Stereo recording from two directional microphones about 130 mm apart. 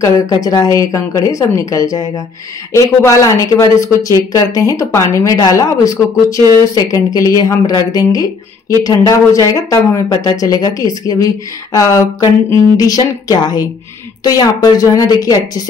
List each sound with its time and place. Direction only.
0.0 s speech: 25° left (ahead or behind)